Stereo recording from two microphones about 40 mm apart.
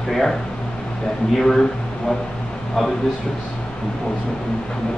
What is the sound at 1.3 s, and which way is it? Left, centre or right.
Speech, centre.